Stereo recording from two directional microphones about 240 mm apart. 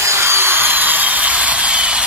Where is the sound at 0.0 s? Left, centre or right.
Centre.